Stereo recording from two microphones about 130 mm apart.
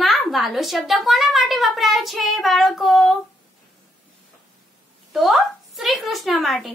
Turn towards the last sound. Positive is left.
turn(degrees=0)  # may be behind; listen again after turning